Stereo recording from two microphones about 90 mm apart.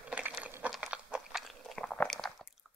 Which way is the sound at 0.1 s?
15° right (ahead or behind).